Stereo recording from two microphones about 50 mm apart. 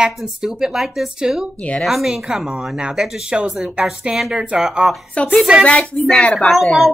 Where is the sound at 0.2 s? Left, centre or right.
Centre.